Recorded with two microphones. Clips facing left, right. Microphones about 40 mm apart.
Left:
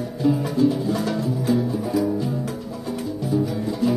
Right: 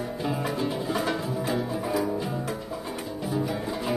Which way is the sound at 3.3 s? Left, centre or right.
Right.